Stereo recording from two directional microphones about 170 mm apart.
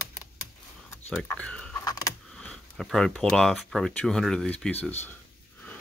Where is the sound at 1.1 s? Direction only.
5° left (ahead or behind).